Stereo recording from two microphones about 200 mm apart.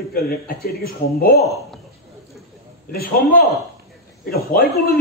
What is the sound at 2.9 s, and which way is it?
Speech, 50° left (ahead or behind).